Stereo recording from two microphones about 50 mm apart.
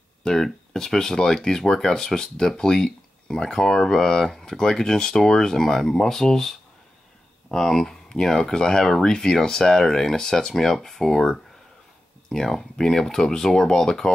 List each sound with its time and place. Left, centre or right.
0.2 s speech: centre